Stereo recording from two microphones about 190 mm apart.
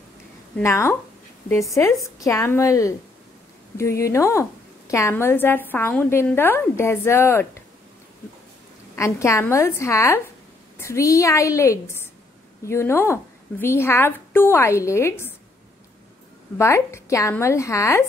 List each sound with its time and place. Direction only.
0.6 s a woman's voice: 15° left (ahead or behind)
8.9 s a woman's voice: 15° left (ahead or behind)
16.5 s a woman's voice: 15° left (ahead or behind)